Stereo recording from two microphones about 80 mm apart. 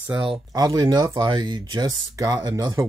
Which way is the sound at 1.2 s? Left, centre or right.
Right.